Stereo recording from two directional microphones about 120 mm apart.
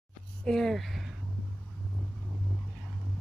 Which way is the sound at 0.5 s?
5° left (ahead or behind).